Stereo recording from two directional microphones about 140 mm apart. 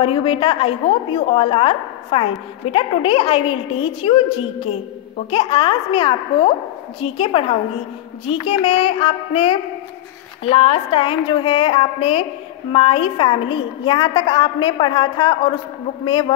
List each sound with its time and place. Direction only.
0.0 s a woman's voice: 40° left (ahead or behind)